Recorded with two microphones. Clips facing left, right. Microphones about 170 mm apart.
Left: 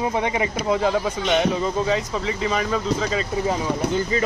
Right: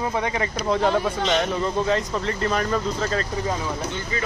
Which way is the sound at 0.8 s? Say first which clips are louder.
Even; 5° left (ahead or behind).